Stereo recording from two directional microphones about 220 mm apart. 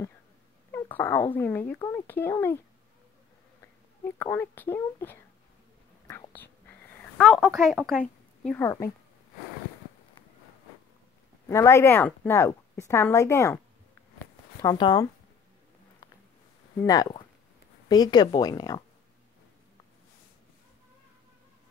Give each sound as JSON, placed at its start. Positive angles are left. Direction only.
{"t": 0.7, "sound": "a woman's voice", "side_deg": 10}
{"t": 4.2, "sound": "a woman's voice", "side_deg": 10}
{"t": 6.0, "sound": "a sound", "side_deg": 10}
{"t": 7.2, "sound": "speech", "side_deg": 0}
{"t": 8.5, "sound": "a woman's voice", "side_deg": 10}
{"t": 11.4, "sound": "a woman's voice", "side_deg": 10}
{"t": 14.6, "sound": "a woman's voice", "side_deg": 20}
{"t": 16.8, "sound": "a woman's voice", "side_deg": 15}